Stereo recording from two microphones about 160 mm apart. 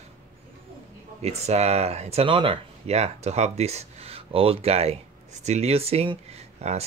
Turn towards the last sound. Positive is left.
turn(degrees=-40)  # may be behind; listen again after turning